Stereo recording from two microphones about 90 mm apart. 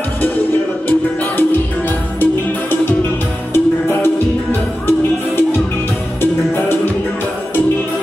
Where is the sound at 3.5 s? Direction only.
25° left (ahead or behind).